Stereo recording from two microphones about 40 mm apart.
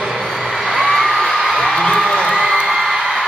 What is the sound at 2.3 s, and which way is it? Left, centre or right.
Whoop, centre.